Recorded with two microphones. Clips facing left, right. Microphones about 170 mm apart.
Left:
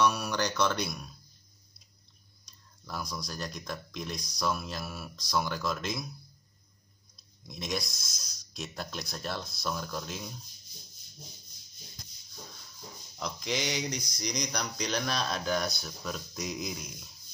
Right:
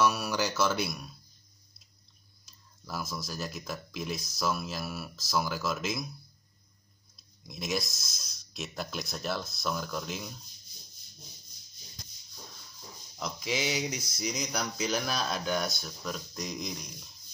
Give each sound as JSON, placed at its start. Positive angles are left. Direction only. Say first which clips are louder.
{"t": 0.0, "sound": "speech", "louder": "even", "side_deg": -5}
{"t": 2.4, "sound": "speech", "louder": "right 1 dB", "side_deg": -5}
{"t": 7.4, "sound": "speech", "louder": "right 2 dB", "side_deg": 0}
{"t": 13.2, "sound": "speech", "louder": "right 1 dB", "side_deg": -5}